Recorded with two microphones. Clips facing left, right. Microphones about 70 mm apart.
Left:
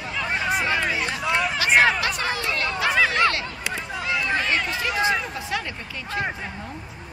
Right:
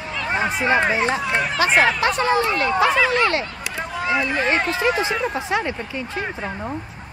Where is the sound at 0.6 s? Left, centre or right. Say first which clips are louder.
Right 6 dB; right.